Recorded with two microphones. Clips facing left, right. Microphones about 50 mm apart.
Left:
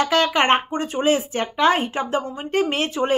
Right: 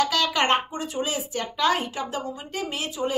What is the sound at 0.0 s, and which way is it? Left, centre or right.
A woman's voice, left.